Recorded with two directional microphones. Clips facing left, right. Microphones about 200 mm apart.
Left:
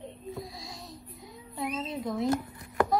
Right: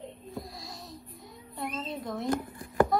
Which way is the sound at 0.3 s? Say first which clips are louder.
Left 2 dB; centre (ahead or behind).